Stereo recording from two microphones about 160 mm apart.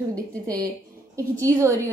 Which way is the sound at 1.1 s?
20° right (ahead or behind).